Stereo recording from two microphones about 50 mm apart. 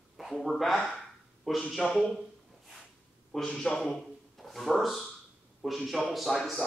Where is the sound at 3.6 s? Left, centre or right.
Centre.